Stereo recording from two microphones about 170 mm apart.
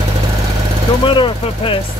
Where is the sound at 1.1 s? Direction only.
30° left (ahead or behind).